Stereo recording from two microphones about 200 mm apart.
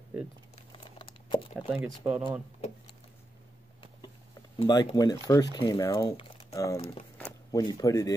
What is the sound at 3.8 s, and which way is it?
Speech, 25° left (ahead or behind).